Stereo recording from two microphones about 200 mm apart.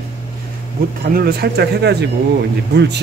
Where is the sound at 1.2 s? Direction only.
50° right (ahead or behind).